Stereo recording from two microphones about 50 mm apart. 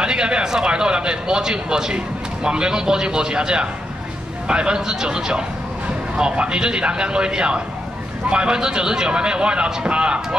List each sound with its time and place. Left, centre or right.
0.0 s a man's voice: centre